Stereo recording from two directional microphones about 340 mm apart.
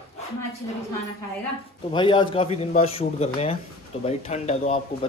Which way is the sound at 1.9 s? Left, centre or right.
Centre.